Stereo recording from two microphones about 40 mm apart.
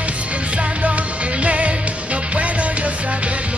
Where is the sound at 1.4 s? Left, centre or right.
Right.